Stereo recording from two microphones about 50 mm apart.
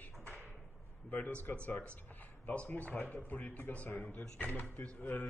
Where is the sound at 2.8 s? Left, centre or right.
Left.